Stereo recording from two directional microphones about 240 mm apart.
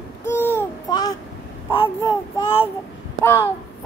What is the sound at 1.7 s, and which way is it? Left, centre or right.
Speech, left.